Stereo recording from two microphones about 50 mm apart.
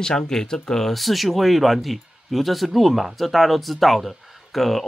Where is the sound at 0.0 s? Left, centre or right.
Centre.